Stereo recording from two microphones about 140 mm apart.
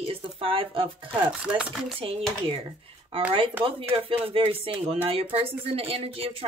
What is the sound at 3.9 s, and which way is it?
Speech, 40° right (ahead or behind).